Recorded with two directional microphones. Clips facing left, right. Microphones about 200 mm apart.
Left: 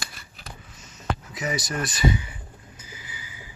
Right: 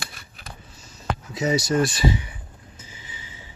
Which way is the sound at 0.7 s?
30° right (ahead or behind).